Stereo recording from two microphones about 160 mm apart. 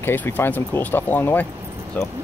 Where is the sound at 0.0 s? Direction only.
10° left (ahead or behind).